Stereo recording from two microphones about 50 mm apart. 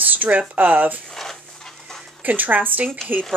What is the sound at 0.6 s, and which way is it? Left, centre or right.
Speech, right.